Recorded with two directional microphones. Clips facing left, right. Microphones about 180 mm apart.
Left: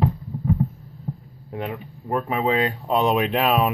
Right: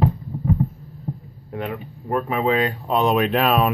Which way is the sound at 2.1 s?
20° left (ahead or behind).